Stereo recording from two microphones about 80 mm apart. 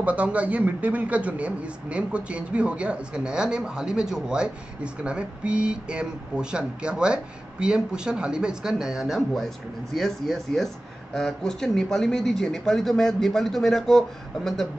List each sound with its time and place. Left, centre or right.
0.0 s speech: centre